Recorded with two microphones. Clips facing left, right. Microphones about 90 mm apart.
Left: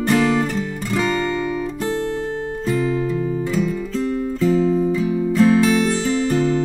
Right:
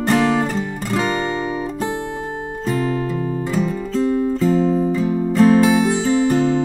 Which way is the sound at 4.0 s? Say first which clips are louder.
Right 6 dB; 20° right (ahead or behind).